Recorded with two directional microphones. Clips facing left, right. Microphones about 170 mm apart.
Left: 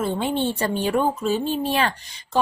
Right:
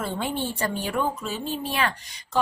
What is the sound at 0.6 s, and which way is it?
Speech, 30° left (ahead or behind).